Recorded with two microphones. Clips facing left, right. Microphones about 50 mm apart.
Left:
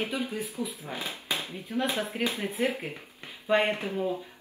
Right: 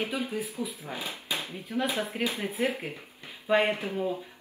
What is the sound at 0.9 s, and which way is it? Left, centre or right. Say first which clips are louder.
Speech: left 1 dB; left.